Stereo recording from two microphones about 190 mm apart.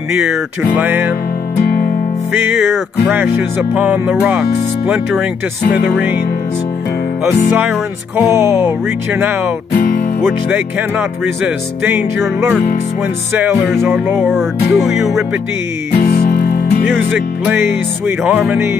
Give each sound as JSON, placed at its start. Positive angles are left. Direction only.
{"t": 0.1, "sound": "music", "side_deg": -10}
{"t": 2.4, "sound": "music", "side_deg": -10}
{"t": 8.2, "sound": "music", "side_deg": -15}
{"t": 9.8, "sound": "music", "side_deg": 45}
{"t": 10.2, "sound": "music", "side_deg": -10}
{"t": 13.3, "sound": "music", "side_deg": -10}
{"t": 16.0, "sound": "music", "side_deg": 55}
{"t": 17.1, "sound": "music", "side_deg": -10}